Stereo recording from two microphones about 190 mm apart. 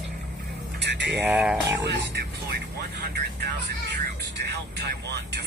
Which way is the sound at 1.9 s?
60° right (ahead or behind).